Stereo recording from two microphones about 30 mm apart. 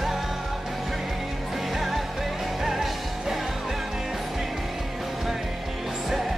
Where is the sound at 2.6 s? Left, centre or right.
Centre.